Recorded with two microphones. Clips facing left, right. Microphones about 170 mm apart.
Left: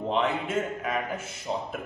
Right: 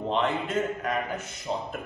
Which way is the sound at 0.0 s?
5° left (ahead or behind).